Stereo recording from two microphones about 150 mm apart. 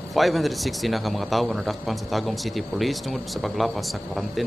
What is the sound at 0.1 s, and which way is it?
A man's voice, centre (ahead or behind).